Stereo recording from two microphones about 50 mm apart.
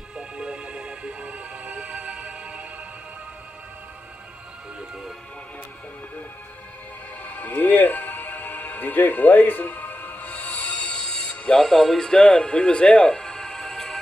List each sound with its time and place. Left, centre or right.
0.4 s music: centre
7.2 s music: left; by 12.1 s centre
12.1 s speech: centre